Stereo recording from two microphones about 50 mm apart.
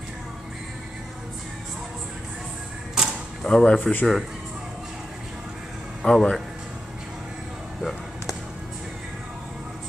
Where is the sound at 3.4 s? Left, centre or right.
Centre.